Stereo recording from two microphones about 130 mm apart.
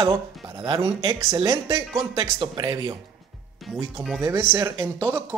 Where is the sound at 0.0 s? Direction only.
25° right (ahead or behind).